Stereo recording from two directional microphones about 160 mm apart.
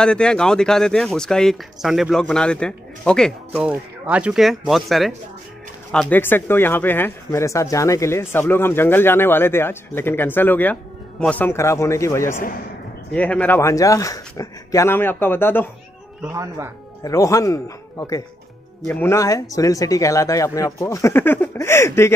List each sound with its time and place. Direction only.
0.0 s speech: 5° left (ahead or behind)
3.5 s speech: 10° right (ahead or behind); by 15.7 s 15° left (ahead or behind)
16.3 s speech: 15° right (ahead or behind)
17.0 s speech: 20° left (ahead or behind)